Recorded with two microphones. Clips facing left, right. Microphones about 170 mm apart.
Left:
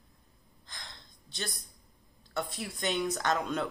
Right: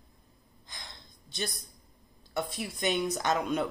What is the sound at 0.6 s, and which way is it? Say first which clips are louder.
Gasp: right 1 dB; 15° right (ahead or behind).